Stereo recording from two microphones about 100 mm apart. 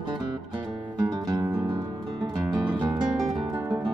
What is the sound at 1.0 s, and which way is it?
Music, 40° right (ahead or behind).